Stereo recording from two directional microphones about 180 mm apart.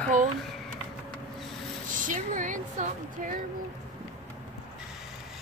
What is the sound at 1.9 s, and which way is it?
Speech, 45° right (ahead or behind).